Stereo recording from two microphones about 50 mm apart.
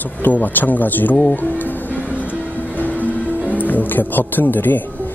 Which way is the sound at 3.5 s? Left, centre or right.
Left.